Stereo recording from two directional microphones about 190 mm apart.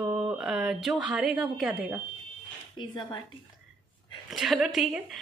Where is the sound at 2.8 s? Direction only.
25° left (ahead or behind).